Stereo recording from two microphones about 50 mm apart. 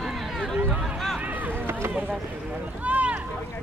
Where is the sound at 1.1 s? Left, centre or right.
Right.